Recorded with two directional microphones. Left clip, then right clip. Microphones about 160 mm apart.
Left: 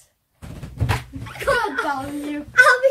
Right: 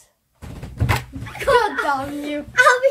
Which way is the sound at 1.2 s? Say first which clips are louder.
Right 4 dB; 5° left (ahead or behind).